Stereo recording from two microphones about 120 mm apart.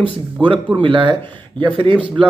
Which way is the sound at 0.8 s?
45° right (ahead or behind).